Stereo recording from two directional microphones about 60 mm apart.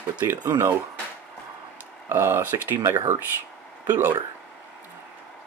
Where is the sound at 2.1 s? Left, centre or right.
Right.